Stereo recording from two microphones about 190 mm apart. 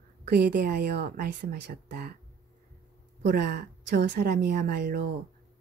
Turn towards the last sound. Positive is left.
turn(degrees=-55)  # may be behind; listen again after turning